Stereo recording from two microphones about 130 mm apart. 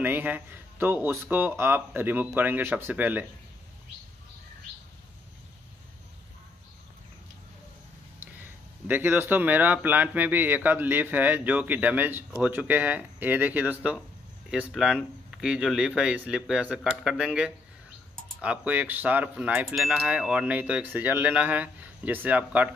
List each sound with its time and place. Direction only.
0.0 s speech: 15° right (ahead or behind)
8.2 s speech: 15° right (ahead or behind)